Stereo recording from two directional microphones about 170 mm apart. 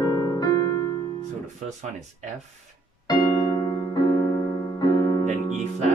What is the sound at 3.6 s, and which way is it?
Music, 30° left (ahead or behind).